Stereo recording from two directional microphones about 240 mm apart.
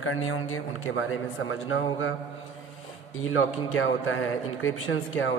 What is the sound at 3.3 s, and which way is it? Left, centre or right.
A man's voice, left.